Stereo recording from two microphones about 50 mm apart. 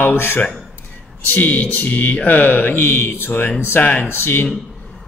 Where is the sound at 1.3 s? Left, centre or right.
Left.